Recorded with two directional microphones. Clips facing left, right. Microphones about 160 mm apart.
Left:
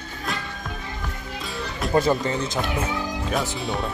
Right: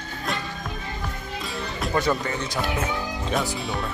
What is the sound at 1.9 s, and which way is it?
Speech, 30° left (ahead or behind).